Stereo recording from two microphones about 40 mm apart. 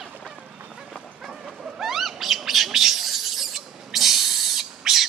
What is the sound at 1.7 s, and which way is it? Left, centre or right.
Bird, centre.